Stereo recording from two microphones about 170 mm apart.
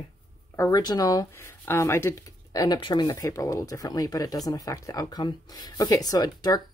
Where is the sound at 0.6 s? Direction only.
20° left (ahead or behind).